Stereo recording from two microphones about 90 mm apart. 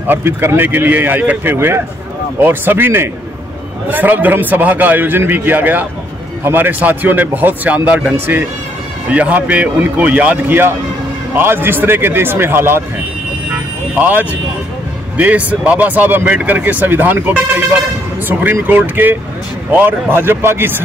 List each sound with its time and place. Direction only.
0.0 s speech: 25° right (ahead or behind)
13.9 s speech: 20° right (ahead or behind)